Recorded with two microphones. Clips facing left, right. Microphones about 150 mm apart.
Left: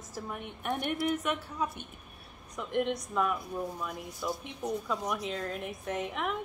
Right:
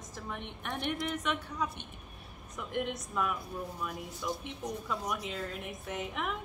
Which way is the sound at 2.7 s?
Centre (ahead or behind).